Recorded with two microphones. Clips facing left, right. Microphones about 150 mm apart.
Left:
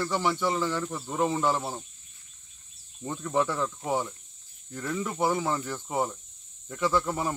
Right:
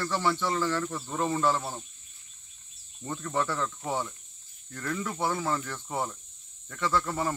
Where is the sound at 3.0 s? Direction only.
15° left (ahead or behind).